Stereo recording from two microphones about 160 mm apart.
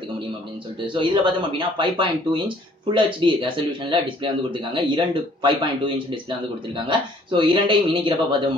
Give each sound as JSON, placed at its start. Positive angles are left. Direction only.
{"t": 0.9, "sound": "speech", "side_deg": -30}
{"t": 6.9, "sound": "speech", "side_deg": -30}